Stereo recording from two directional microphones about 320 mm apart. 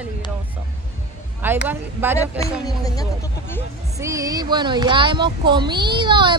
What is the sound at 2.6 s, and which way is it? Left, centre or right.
Speech, centre.